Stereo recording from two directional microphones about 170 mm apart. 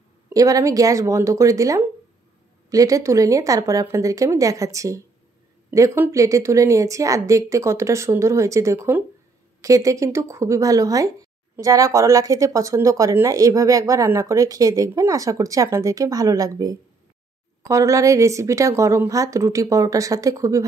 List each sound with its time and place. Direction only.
0.3 s a woman's voice: 20° right (ahead or behind)